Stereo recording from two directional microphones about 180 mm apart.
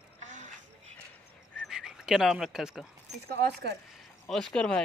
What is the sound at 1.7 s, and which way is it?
Speech, 5° right (ahead or behind).